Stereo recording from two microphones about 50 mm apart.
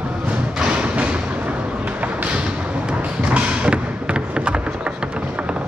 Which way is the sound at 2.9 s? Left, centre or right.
Right.